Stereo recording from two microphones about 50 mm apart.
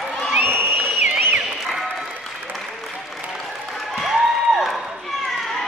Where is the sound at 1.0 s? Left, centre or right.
Right.